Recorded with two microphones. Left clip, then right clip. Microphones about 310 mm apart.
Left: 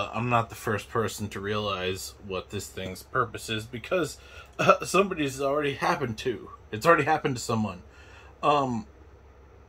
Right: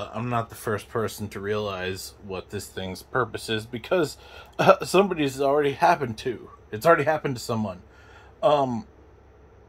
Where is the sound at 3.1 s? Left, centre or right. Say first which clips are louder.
Right 2 dB; centre.